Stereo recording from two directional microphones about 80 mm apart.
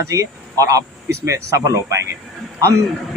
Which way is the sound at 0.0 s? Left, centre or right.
Right.